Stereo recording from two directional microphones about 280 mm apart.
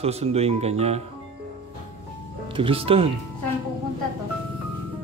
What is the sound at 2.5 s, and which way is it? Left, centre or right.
Speech, centre.